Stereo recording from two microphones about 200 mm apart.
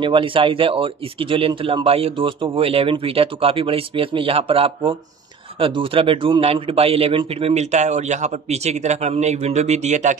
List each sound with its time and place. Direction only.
0.0 s a man's voice: 25° right (ahead or behind)